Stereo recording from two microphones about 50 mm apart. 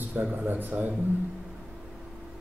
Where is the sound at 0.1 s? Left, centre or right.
Right.